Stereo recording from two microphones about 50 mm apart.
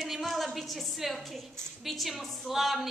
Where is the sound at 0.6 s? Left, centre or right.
Centre.